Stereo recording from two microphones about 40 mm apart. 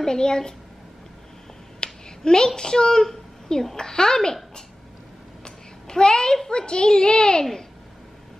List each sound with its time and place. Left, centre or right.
0.0 s a woman's voice: centre
1.8 s a woman's voice: centre
5.4 s a sound: centre
6.5 s a child's voice: left